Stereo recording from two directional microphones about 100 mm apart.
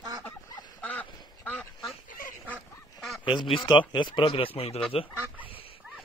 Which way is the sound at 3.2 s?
50° left (ahead or behind).